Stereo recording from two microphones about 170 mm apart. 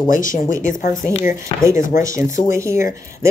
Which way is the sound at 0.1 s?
50° left (ahead or behind).